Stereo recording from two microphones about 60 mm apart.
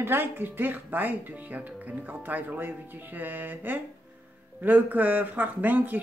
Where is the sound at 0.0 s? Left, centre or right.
Right.